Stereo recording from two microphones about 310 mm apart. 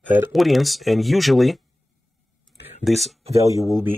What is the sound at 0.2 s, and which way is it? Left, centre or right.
Speech, centre.